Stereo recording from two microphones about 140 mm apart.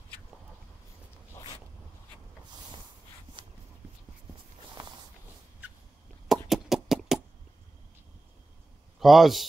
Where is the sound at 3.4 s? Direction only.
35° right (ahead or behind).